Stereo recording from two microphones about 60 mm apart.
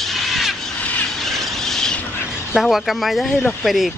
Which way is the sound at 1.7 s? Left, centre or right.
Centre.